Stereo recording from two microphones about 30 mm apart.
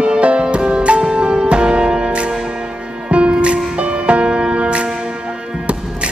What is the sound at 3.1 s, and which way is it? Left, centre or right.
Music, right.